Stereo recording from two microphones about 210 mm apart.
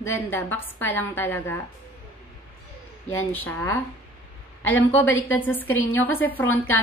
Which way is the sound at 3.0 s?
10° left (ahead or behind).